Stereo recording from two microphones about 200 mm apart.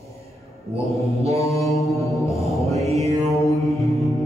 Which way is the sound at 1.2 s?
15° left (ahead or behind).